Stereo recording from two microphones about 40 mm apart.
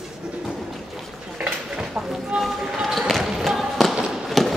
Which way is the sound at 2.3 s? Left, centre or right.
Centre.